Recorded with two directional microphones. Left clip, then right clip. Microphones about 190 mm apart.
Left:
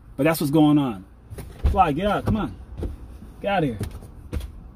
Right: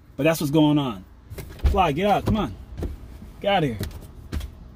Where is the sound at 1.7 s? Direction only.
35° right (ahead or behind).